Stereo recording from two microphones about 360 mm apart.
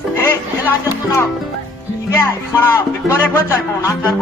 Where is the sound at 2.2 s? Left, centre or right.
Centre.